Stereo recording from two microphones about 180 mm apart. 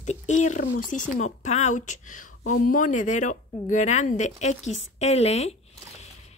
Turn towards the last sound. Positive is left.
turn(degrees=35)  # may be behind; listen again after turning